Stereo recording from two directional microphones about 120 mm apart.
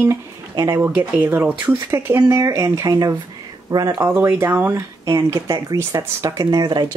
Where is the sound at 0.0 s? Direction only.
25° right (ahead or behind).